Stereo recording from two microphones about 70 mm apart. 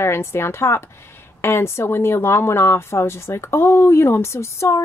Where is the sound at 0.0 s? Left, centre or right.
Left.